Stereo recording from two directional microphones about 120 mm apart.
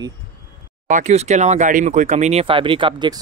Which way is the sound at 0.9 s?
85° right.